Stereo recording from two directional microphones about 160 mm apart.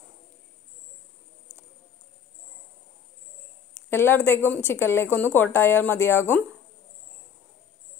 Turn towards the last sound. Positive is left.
turn(degrees=15)  # may be behind; listen again after turning